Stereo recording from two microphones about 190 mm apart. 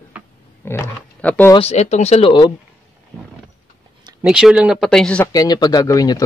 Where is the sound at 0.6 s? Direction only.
10° left (ahead or behind).